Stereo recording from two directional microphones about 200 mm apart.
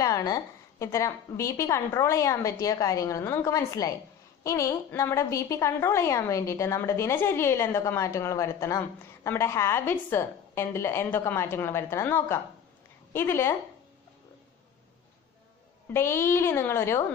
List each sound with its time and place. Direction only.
0.0 s a woman's voice: 20° left (ahead or behind)
15.9 s a woman's voice: 10° left (ahead or behind)